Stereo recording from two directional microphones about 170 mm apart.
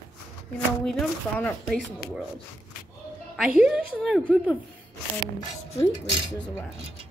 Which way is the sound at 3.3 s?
5° right (ahead or behind).